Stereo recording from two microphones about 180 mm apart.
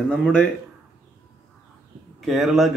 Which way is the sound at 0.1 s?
5° left (ahead or behind).